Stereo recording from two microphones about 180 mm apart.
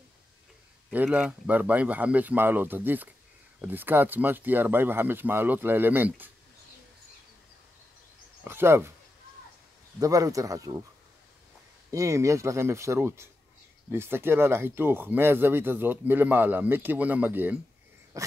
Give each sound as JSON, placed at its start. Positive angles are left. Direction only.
{"t": 0.9, "sound": "speech", "side_deg": -10}
{"t": 8.5, "sound": "speech", "side_deg": -15}
{"t": 9.9, "sound": "speech", "side_deg": -20}
{"t": 11.9, "sound": "speech", "side_deg": -15}